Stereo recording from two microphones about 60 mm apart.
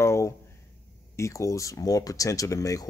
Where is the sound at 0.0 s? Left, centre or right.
Left.